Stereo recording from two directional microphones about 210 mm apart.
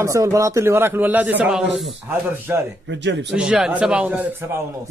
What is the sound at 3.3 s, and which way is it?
A man's voice, 5° right (ahead or behind).